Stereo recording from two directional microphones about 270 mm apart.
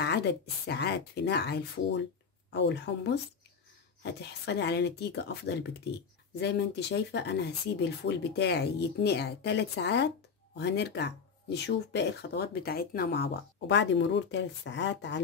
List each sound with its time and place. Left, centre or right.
0.0 s speech: left